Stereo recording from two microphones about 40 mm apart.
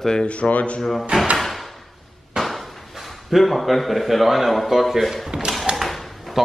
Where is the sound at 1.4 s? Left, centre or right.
Centre.